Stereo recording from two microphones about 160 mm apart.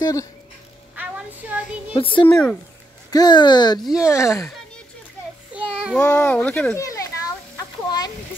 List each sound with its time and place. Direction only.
0.0 s speech: 20° left (ahead or behind)
0.9 s child singing: 10° right (ahead or behind)
2.0 s a child's voice: 35° left (ahead or behind)
2.2 s speech: 5° left (ahead or behind)
3.1 s speech: 25° left (ahead or behind)
3.8 s speech: 5° right (ahead or behind)
4.1 s speech: 15° left (ahead or behind)
5.7 s a sound: 5° right (ahead or behind)
5.9 s speech: 10° left (ahead or behind)
6.8 s children playing: 20° left (ahead or behind)